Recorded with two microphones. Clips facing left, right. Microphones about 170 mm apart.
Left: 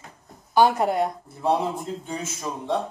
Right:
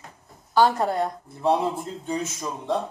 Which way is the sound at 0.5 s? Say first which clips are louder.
Left 1 dB; 15° left (ahead or behind).